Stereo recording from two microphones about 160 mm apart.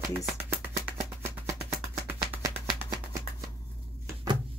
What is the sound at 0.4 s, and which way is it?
Music, 10° right (ahead or behind).